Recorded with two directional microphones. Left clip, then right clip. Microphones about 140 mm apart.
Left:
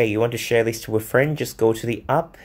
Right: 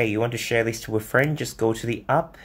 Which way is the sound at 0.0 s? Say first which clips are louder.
Left 4 dB; 40° left (ahead or behind).